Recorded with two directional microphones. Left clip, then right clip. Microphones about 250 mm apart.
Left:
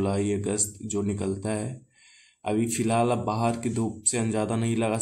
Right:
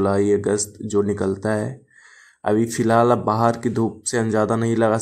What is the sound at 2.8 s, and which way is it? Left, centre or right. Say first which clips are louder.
Speech: right 9 dB; right.